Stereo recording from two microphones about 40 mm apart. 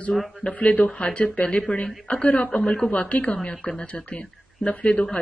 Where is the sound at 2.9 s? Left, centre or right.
Left.